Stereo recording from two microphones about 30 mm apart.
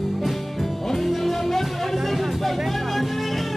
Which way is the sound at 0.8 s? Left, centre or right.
Centre.